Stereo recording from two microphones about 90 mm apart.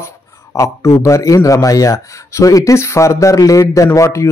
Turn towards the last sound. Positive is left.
turn(degrees=35)  # may be behind; listen again after turning